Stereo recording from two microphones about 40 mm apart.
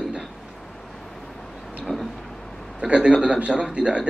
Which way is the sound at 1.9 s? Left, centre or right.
Left.